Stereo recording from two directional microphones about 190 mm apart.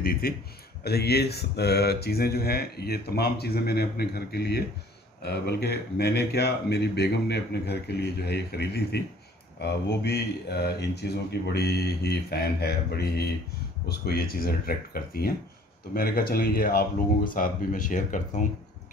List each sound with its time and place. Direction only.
0.0 s speech: 50° left (ahead or behind)